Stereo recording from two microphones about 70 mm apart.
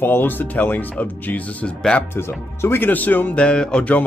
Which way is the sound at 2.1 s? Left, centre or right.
Left.